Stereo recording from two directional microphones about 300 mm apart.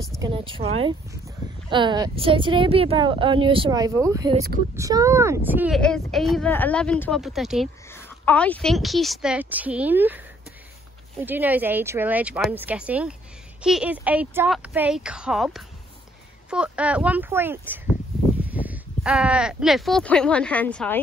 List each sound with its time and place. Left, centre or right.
0.2 s speech: centre